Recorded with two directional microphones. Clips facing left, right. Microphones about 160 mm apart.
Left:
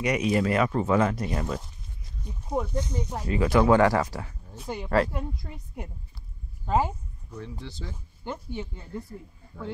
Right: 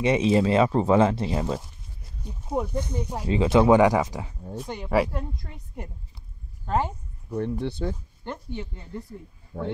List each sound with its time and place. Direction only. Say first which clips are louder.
0.0 s speech: right 4 dB; 25° right (ahead or behind)
2.2 s speech: right 1 dB; 10° right (ahead or behind)
3.3 s speech: right 3 dB; 25° right (ahead or behind)
4.6 s a woman's voice: right 1 dB; 5° left (ahead or behind)
7.3 s speech: right 11 dB; 60° right (ahead or behind)
8.2 s a woman's voice: even; 5° left (ahead or behind)
9.5 s speech: right 6 dB; 40° right (ahead or behind)